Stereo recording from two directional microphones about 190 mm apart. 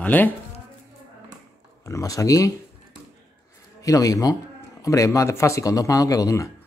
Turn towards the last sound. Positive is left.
turn(degrees=15)  # may be behind; listen again after turning